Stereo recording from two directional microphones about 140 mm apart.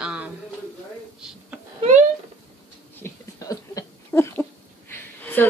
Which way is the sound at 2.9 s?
20° left (ahead or behind).